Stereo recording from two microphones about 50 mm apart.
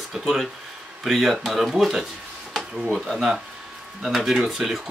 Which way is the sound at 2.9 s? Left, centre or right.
Centre.